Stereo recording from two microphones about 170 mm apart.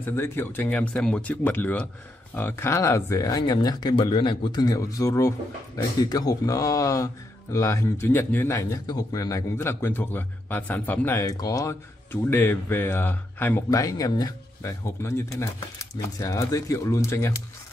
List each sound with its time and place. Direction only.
0.0 s speech: 15° left (ahead or behind)